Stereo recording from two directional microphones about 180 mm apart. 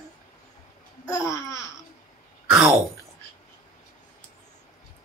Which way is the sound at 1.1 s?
15° left (ahead or behind).